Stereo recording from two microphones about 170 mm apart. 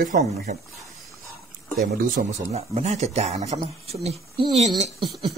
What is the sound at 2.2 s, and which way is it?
Speech, 55° right (ahead or behind).